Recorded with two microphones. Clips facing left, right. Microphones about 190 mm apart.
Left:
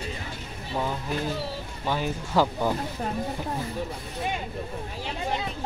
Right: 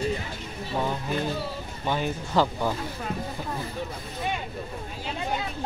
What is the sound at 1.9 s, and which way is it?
Speech, 5° left (ahead or behind).